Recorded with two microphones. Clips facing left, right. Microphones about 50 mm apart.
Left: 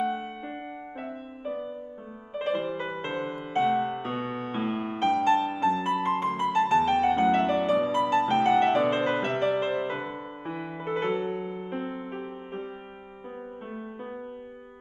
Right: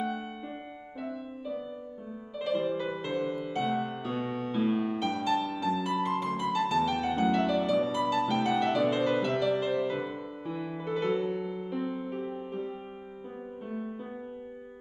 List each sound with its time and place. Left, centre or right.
1.0 s music: left